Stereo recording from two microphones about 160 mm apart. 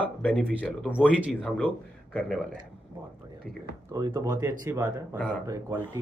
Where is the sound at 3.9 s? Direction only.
20° right (ahead or behind).